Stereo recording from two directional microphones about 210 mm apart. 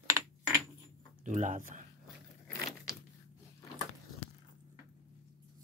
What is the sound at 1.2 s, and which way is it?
Speech, 35° right (ahead or behind).